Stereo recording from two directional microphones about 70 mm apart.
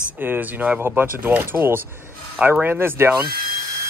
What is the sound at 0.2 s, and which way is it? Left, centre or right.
Speech, right.